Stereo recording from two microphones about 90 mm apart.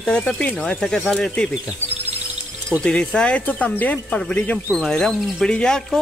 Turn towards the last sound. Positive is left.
turn(degrees=10)  # may be behind; listen again after turning